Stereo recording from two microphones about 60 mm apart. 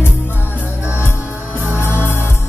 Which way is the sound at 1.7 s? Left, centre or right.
Left.